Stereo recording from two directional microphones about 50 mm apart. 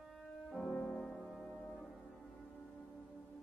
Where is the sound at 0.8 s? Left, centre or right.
Centre.